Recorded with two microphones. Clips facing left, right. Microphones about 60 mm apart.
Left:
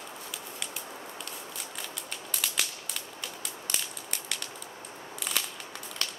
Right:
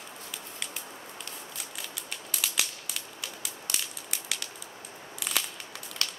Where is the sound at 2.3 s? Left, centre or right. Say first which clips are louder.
Right 1 dB; centre.